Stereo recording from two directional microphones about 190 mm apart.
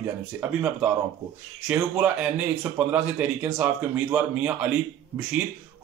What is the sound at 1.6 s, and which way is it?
Speech, 10° right (ahead or behind).